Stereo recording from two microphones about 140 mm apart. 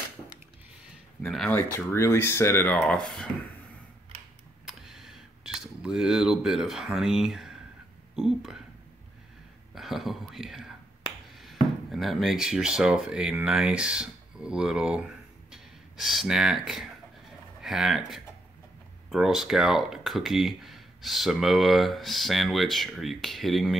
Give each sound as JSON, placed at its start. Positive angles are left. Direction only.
{"t": 1.9, "sound": "speech", "side_deg": 20}
{"t": 4.6, "sound": "a sound", "side_deg": 0}
{"t": 8.2, "sound": "speech", "side_deg": 0}
{"t": 9.8, "sound": "speech", "side_deg": 0}